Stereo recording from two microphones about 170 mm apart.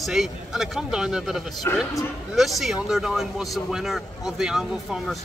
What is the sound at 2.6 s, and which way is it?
Speech, centre (ahead or behind).